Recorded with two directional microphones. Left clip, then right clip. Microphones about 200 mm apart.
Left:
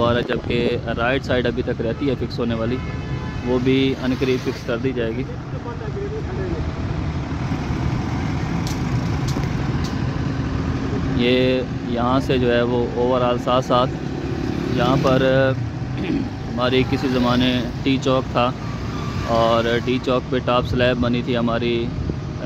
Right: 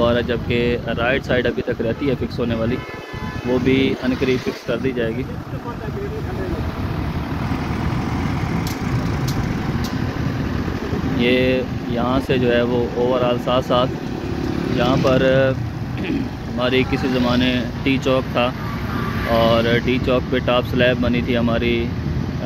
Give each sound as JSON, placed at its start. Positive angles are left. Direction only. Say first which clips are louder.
{"t": 0.0, "sound": "speech", "louder": "right 1 dB", "side_deg": 10}
{"t": 11.1, "sound": "speech", "louder": "right 1 dB", "side_deg": 15}
{"t": 15.0, "sound": "speech", "louder": "right 2 dB", "side_deg": 15}